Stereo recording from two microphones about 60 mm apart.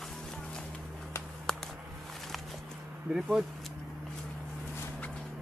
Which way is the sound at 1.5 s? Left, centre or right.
Centre.